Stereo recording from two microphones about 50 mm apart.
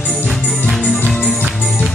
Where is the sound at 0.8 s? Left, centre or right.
Left.